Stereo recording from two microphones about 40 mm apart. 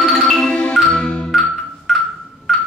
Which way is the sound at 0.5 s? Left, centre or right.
Left.